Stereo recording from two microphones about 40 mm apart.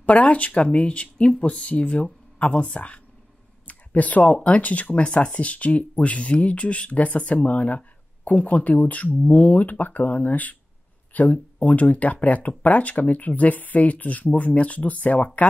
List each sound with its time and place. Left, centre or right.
0.0 s speech: left
3.6 s speech: left